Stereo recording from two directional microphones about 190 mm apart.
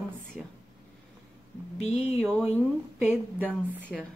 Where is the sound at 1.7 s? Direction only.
35° left (ahead or behind).